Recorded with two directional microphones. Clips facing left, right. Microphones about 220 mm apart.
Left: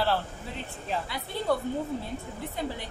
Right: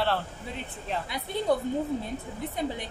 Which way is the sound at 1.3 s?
20° right (ahead or behind).